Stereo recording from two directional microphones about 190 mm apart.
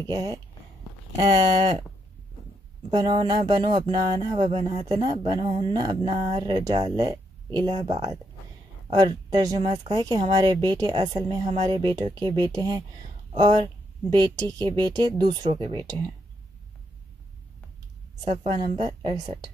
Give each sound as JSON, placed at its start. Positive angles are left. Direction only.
{"t": 0.1, "sound": "speech", "side_deg": -20}
{"t": 2.9, "sound": "speech", "side_deg": -25}
{"t": 9.7, "sound": "speech", "side_deg": -35}
{"t": 14.1, "sound": "speech", "side_deg": -20}
{"t": 18.5, "sound": "speech", "side_deg": -25}